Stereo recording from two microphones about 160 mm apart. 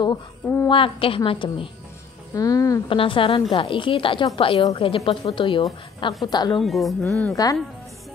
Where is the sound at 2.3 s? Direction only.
20° left (ahead or behind).